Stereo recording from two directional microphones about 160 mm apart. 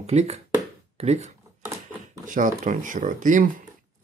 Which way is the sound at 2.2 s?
55° right (ahead or behind).